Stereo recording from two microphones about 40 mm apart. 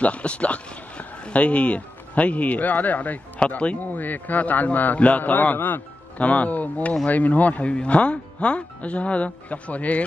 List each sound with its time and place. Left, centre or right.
0.0 s speech: left
3.3 s a man's voice: left
7.6 s speech: left